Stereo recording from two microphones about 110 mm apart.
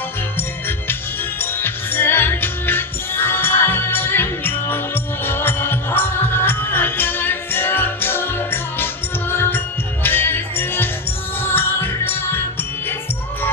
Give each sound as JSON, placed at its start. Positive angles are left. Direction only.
{"t": 0.4, "sound": "music", "side_deg": 20}